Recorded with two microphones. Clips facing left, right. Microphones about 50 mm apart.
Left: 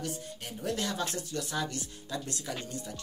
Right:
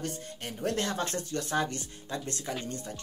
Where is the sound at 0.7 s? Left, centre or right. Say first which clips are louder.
Right 2 dB; right.